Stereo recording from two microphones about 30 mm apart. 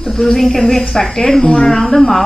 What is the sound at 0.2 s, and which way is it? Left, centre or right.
A woman's voice, centre.